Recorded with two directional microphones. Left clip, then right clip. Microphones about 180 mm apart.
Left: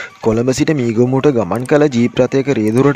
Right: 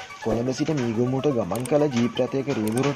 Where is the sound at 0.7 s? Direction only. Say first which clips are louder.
Left 10 dB; 45° left (ahead or behind).